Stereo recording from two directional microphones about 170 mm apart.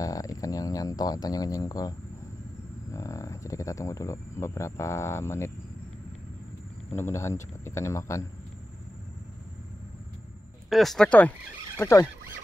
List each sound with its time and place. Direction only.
0.0 s speech: 20° left (ahead or behind)
2.9 s cricket: 20° left (ahead or behind)
6.9 s speech: 15° left (ahead or behind)
10.7 s speech: centre (ahead or behind)